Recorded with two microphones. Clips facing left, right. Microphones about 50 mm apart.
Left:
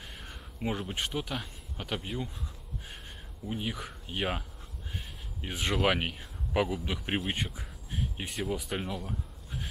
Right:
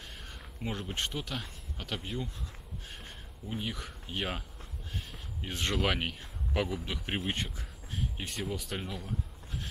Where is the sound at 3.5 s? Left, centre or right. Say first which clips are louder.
Left 2 dB; centre.